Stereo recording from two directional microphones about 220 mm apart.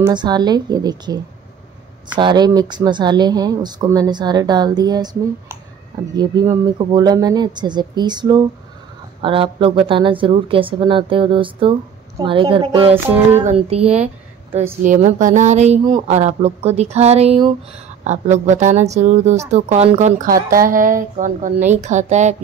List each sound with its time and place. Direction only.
0.0 s speech: 20° right (ahead or behind)
12.9 s a sound: 10° right (ahead or behind)
13.4 s speech: 30° right (ahead or behind)
15.8 s speech: 20° right (ahead or behind)
16.2 s speech: 30° right (ahead or behind)